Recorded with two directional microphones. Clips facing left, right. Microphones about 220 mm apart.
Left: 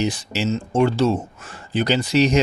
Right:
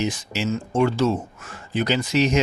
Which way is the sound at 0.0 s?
35° left (ahead or behind).